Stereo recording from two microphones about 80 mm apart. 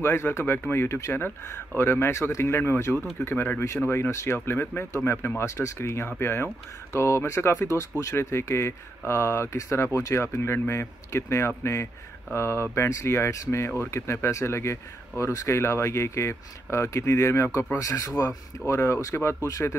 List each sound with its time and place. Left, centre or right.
0.0 s speech: left